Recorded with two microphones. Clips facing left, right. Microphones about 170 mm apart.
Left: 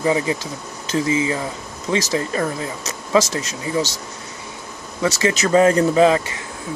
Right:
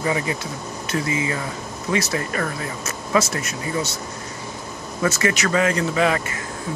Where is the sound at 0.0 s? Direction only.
25° left (ahead or behind).